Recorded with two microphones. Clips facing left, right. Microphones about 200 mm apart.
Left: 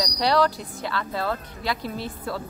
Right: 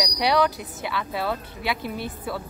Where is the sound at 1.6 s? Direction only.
55° right (ahead or behind).